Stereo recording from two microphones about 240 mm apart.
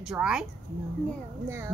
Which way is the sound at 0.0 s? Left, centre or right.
Centre.